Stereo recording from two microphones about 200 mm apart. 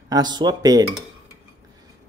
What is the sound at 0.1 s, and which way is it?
Speech, 20° right (ahead or behind).